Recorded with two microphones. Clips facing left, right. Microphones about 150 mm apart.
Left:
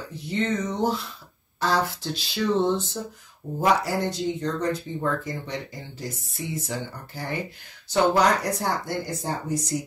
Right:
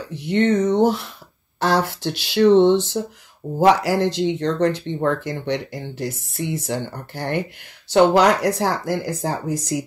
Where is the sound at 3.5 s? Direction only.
90° right; by 7.4 s 70° right (ahead or behind).